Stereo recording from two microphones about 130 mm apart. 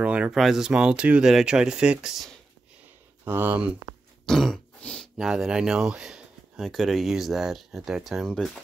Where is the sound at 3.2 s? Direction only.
15° right (ahead or behind).